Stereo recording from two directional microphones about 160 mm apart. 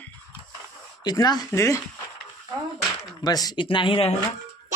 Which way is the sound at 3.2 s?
25° left (ahead or behind).